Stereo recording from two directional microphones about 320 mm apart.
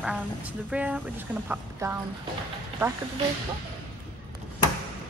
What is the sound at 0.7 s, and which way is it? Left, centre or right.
A woman's voice, centre.